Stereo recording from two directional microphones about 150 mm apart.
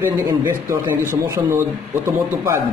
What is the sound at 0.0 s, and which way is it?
A man's voice, 15° right (ahead or behind).